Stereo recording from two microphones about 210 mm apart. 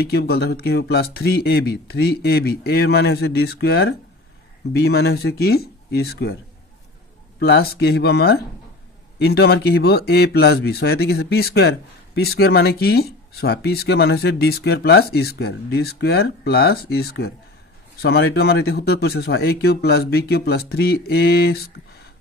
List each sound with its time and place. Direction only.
0.0 s speech: 50° left (ahead or behind)
7.3 s speech: 50° left (ahead or behind)